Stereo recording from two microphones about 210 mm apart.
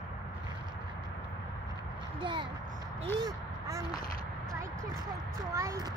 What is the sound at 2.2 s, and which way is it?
Speech, 20° right (ahead or behind).